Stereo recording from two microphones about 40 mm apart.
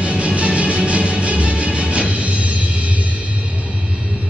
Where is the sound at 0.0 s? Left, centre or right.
Right.